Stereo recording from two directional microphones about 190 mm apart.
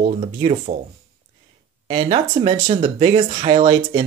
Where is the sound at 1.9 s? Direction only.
25° right (ahead or behind).